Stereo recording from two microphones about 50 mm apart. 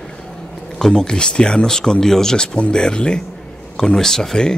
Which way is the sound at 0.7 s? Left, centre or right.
Centre.